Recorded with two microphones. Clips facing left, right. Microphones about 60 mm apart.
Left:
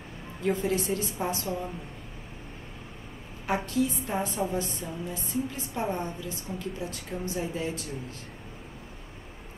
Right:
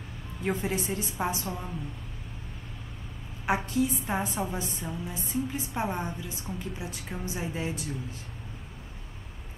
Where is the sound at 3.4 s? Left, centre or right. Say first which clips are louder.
Even; centre.